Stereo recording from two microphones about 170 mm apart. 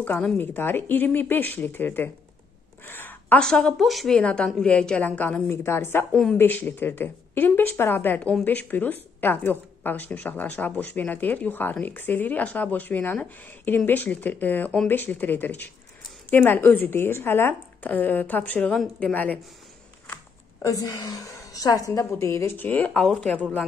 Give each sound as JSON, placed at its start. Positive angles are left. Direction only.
{"t": 0.0, "sound": "speech", "side_deg": 10}
{"t": 20.6, "sound": "speech", "side_deg": 20}